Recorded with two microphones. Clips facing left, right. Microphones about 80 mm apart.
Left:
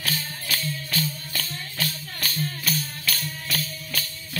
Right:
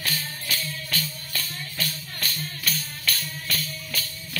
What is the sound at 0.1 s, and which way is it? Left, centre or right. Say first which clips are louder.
Music: left 1 dB; left.